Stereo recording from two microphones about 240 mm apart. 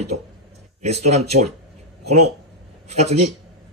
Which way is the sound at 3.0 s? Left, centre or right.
Right.